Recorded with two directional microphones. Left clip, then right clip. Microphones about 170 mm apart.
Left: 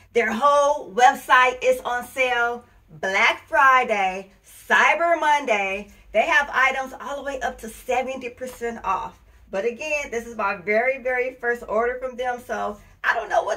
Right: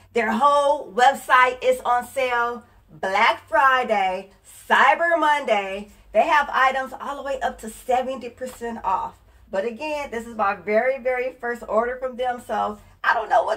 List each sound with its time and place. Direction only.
0.1 s a woman's voice: 20° left (ahead or behind)